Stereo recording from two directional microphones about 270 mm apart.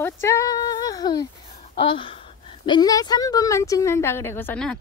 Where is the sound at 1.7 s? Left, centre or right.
Centre.